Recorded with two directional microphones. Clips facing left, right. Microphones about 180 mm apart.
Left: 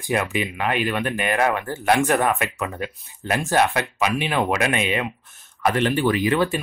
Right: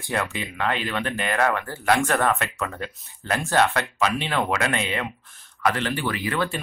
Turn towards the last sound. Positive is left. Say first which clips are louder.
# left 6 dB
turn(degrees=20)  # may be behind; listen again after turning